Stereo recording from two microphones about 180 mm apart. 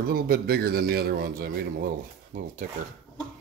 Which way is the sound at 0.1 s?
55° right (ahead or behind).